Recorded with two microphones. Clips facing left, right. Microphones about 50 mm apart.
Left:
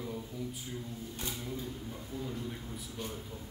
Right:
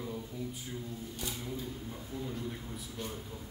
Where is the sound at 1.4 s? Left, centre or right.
Centre.